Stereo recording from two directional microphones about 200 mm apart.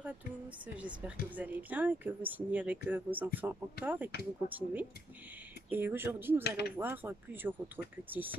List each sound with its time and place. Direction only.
0.7 s speech: 5° right (ahead or behind)